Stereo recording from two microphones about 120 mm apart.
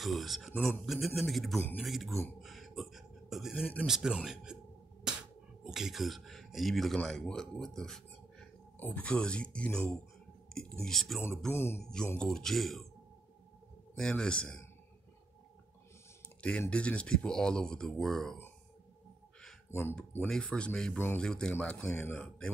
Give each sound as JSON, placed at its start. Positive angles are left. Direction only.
{"t": 0.0, "sound": "speech", "side_deg": 0}
{"t": 2.4, "sound": "a sound", "side_deg": 0}
{"t": 3.8, "sound": "speech", "side_deg": -5}
{"t": 5.6, "sound": "speech", "side_deg": -5}
{"t": 11.5, "sound": "mantra", "side_deg": 20}
{"t": 11.8, "sound": "speech", "side_deg": 5}
{"t": 13.9, "sound": "speech", "side_deg": 5}
{"t": 16.3, "sound": "speech", "side_deg": 10}
{"t": 19.7, "sound": "mantra", "side_deg": 20}
{"t": 20.2, "sound": "speech", "side_deg": 10}